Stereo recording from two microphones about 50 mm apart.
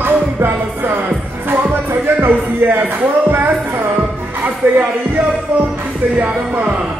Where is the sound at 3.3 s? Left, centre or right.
Right.